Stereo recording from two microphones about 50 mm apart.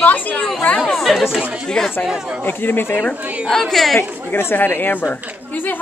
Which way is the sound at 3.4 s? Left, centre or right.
Centre.